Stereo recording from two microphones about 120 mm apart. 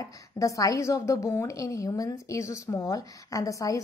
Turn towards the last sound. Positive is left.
turn(degrees=30)  # may be behind; listen again after turning